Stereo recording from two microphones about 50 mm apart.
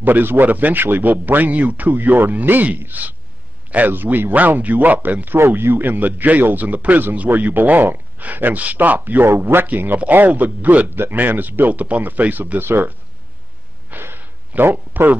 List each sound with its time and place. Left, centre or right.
0.0 s a man's voice: right
9.2 s a man's voice: right
13.8 s a sound: right